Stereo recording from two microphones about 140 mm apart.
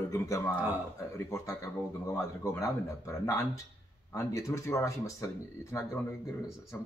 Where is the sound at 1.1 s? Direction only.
20° left (ahead or behind).